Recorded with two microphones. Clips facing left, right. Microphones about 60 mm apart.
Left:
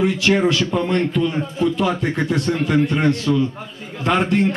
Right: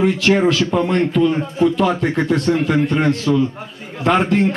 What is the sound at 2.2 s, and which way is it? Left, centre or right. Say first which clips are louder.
Speech: right 3 dB; right.